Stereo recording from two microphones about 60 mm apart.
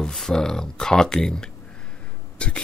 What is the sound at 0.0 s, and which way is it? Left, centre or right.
Speech, centre.